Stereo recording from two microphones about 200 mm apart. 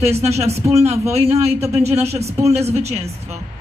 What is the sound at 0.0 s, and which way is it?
A man's voice, 30° right (ahead or behind).